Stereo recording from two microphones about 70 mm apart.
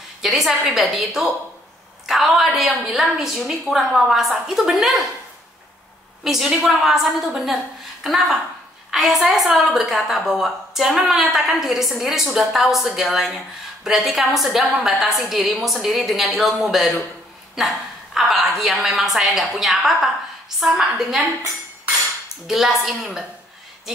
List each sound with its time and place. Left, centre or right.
0.2 s a woman's voice: centre
6.2 s a woman's voice: centre
22.5 s a woman's voice: centre